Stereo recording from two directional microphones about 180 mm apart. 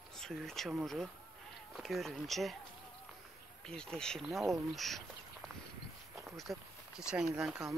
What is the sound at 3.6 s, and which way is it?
Speech, 5° left (ahead or behind).